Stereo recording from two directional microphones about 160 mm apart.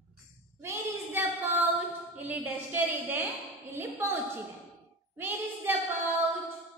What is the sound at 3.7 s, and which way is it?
Speech, 15° right (ahead or behind).